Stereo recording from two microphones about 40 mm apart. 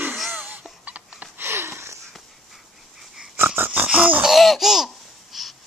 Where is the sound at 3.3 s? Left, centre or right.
Right.